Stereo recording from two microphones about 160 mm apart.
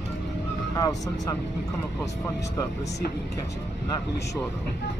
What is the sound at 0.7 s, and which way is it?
Speech, 20° left (ahead or behind).